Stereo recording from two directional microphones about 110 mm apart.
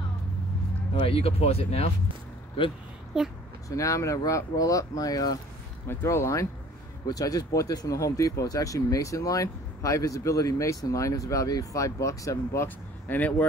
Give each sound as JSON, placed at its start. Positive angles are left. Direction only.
{"t": 1.0, "sound": "speech", "side_deg": 60}
{"t": 2.6, "sound": "speech", "side_deg": 55}
{"t": 3.1, "sound": "a woman's voice", "side_deg": -5}
{"t": 3.6, "sound": "speech", "side_deg": 30}
{"t": 12.6, "sound": "speech", "side_deg": 15}